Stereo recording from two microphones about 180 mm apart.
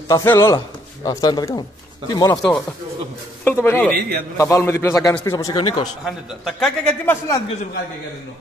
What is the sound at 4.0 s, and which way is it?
Speech, 60° right (ahead or behind).